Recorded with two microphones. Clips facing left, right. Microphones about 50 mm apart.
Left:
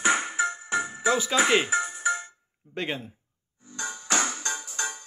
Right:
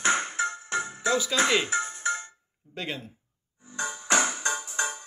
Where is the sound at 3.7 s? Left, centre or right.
Right.